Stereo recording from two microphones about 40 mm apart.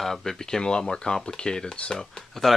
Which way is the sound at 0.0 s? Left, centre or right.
Centre.